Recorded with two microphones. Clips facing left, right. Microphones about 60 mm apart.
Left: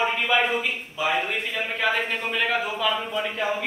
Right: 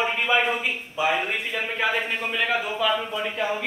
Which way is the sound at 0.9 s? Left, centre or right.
Centre.